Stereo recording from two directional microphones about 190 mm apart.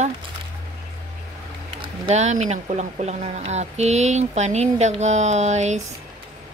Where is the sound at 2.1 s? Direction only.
40° right (ahead or behind).